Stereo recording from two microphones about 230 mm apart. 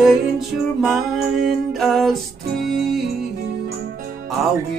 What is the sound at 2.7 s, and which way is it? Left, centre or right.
Music, right.